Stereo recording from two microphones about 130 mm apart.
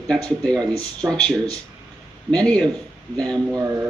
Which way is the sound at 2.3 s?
5° left (ahead or behind).